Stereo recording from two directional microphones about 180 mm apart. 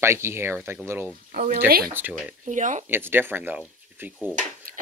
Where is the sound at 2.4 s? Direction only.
45° right (ahead or behind).